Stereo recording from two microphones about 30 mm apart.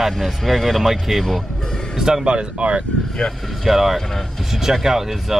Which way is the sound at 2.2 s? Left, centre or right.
Right.